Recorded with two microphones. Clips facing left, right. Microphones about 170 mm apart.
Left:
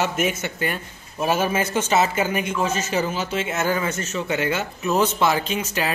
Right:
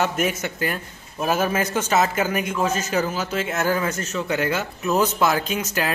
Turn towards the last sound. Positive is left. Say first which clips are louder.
# even
turn(degrees=5)  # may be behind; listen again after turning